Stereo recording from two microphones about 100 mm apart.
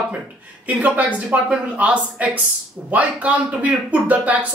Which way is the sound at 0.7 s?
15° right (ahead or behind).